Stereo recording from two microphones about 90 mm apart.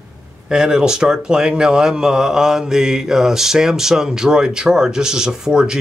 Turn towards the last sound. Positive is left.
turn(degrees=-5)  # may be behind; listen again after turning